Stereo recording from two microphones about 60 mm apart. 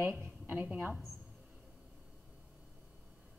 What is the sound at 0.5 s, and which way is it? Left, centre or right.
Speech, right.